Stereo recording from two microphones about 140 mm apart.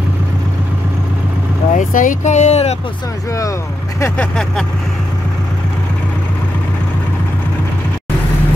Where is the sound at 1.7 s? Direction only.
65° left (ahead or behind); by 2.8 s 50° left (ahead or behind).